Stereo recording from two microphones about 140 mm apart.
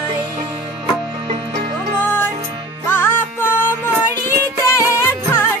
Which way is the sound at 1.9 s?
15° left (ahead or behind).